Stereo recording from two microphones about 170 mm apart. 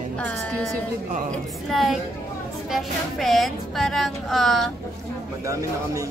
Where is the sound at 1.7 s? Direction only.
Centre (ahead or behind).